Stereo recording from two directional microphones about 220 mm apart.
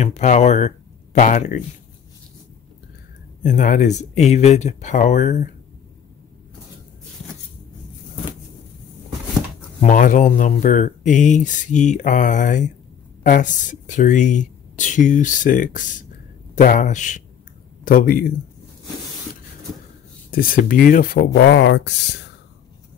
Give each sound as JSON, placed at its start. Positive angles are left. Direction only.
{"t": 0.0, "sound": "speech", "side_deg": 30}
{"t": 3.4, "sound": "speech", "side_deg": 35}
{"t": 9.8, "sound": "speech", "side_deg": 35}
{"t": 20.2, "sound": "speech", "side_deg": 40}